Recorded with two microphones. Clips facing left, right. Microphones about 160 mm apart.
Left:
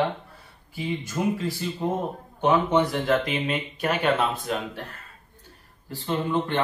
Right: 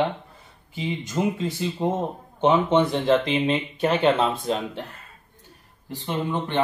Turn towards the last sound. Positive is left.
turn(degrees=-20)  # may be behind; listen again after turning